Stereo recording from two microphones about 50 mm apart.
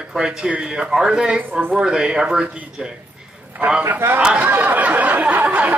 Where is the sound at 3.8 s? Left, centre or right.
Right.